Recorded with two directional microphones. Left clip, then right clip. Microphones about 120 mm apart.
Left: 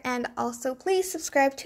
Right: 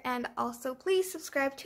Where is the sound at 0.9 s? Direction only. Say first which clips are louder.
Left 6 dB; 40° left (ahead or behind).